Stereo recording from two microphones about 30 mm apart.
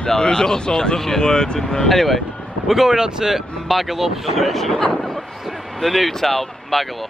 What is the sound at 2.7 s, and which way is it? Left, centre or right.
Speech, centre.